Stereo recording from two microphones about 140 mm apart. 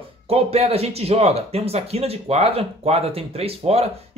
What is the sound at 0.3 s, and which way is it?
Speech, 45° right (ahead or behind).